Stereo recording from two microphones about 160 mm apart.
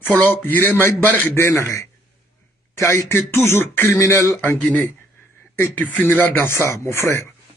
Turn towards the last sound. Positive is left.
turn(degrees=15)  # may be behind; listen again after turning